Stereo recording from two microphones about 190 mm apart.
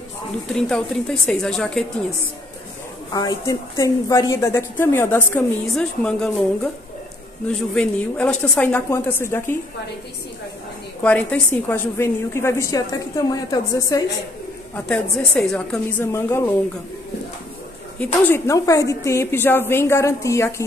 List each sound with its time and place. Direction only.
0.5 s speech: 5° left (ahead or behind)
3.1 s a woman's voice: 20° left (ahead or behind)
7.7 s a woman's voice: 5° left (ahead or behind)
11.0 s a woman's voice: 5° left (ahead or behind)
14.9 s a woman's voice: 5° left (ahead or behind)
17.9 s a woman's voice: 10° left (ahead or behind)